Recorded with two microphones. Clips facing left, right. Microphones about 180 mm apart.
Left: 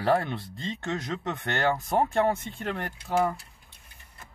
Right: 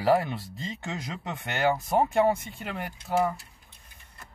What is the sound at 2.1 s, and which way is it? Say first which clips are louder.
Speech: right 2 dB; 15° right (ahead or behind).